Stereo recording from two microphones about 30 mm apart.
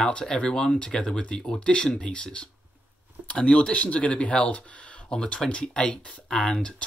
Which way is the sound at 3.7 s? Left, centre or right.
Left.